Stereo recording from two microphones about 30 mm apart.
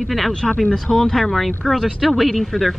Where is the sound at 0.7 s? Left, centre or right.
Centre.